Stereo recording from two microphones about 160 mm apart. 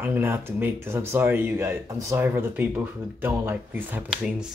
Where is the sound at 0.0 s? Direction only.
10° right (ahead or behind).